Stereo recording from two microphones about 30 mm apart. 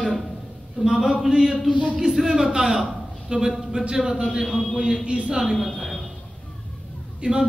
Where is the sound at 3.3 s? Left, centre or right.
Right.